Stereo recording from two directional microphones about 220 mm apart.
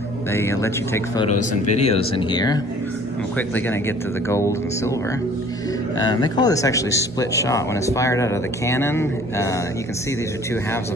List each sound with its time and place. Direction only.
0.3 s speech: 10° left (ahead or behind)
1.2 s speech: 35° left (ahead or behind)
3.3 s speech: 10° left (ahead or behind)
5.9 s speech: 20° left (ahead or behind)